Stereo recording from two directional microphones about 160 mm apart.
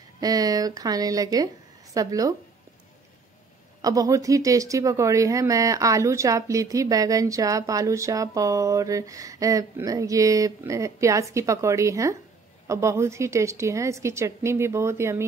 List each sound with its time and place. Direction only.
0.2 s speech: 25° right (ahead or behind)
3.8 s a woman's voice: 20° right (ahead or behind)